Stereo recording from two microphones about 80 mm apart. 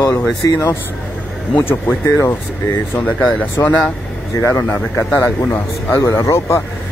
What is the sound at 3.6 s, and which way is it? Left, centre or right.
A man's voice, left.